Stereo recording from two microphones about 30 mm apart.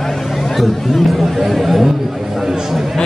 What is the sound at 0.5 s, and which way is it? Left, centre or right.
Speech, centre.